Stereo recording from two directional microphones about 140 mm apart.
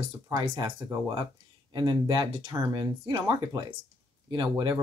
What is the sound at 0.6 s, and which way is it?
Speech, 30° right (ahead or behind).